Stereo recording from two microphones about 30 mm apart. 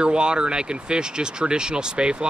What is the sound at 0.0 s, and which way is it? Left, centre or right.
Speech, right.